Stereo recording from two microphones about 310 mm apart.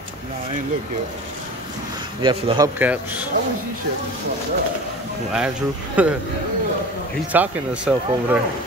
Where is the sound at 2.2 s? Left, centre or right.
Centre.